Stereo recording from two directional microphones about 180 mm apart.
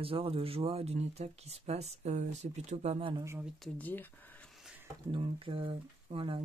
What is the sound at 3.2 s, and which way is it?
Speech, 15° right (ahead or behind).